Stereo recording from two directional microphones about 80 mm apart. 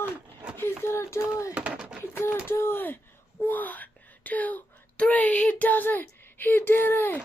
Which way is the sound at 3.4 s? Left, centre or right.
Left.